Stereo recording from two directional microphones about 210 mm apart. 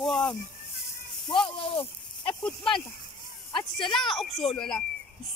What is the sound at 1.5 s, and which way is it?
Speech, 25° left (ahead or behind).